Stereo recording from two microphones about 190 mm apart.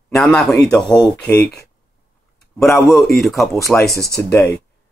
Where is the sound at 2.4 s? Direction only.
Centre (ahead or behind).